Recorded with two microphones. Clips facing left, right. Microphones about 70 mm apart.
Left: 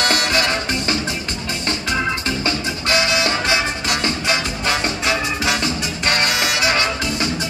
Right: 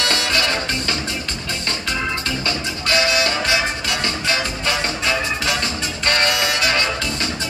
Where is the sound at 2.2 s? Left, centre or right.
Left.